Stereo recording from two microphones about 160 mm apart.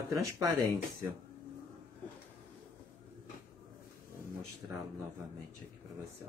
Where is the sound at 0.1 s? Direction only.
20° right (ahead or behind).